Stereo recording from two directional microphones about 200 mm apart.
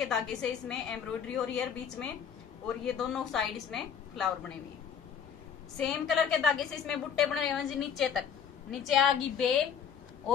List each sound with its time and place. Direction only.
0.1 s a woman's voice: 5° left (ahead or behind)
5.8 s a woman's voice: centre (ahead or behind)